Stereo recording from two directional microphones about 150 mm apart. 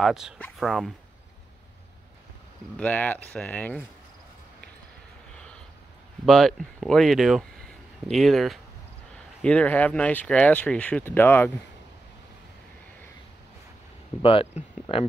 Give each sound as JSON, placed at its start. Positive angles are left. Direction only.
{"t": 0.0, "sound": "speech", "side_deg": 0}
{"t": 2.8, "sound": "speech", "side_deg": 10}
{"t": 5.3, "sound": "a sound", "side_deg": 5}
{"t": 6.2, "sound": "speech", "side_deg": 0}
{"t": 14.2, "sound": "speech", "side_deg": 40}